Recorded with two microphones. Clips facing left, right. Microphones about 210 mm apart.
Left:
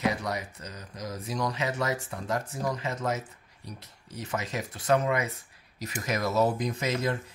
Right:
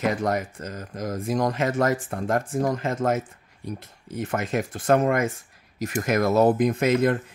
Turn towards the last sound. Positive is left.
turn(degrees=-55)  # may be behind; listen again after turning